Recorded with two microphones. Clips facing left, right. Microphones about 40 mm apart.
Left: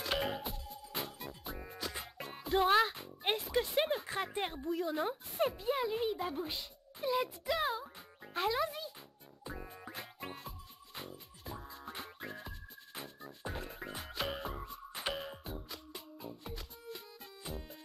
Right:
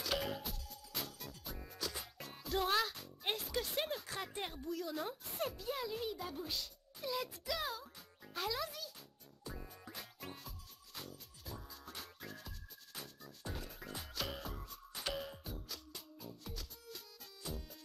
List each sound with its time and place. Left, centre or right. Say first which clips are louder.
0.0 s music: left 4 dB; left
4.3 s a child's voice: left 6 dB; left
9.4 s music: left 4 dB; left